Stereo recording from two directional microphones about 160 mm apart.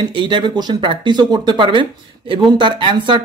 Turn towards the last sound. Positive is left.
turn(degrees=-30)  # may be behind; listen again after turning